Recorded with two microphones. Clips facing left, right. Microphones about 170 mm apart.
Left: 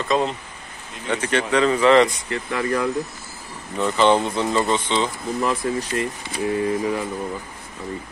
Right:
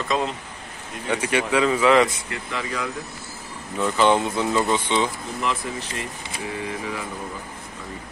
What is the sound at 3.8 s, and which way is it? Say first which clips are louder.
A man's voice: left 2 dB; 5° right (ahead or behind).